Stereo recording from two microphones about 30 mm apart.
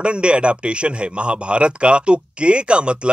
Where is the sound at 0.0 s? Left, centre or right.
Right.